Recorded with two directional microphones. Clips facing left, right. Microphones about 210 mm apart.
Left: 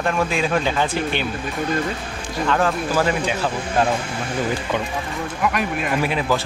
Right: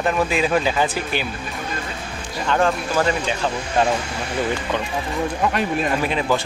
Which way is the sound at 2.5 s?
5° left (ahead or behind).